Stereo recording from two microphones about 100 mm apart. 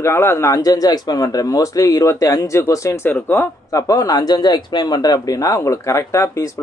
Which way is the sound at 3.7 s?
35° left (ahead or behind).